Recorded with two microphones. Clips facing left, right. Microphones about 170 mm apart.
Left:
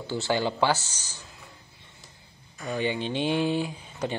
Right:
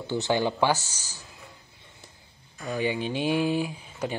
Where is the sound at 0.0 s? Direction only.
15° right (ahead or behind).